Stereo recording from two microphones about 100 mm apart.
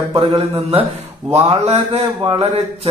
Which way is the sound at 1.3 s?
90° right.